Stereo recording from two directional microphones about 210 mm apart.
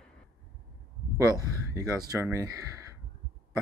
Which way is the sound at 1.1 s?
15° right (ahead or behind).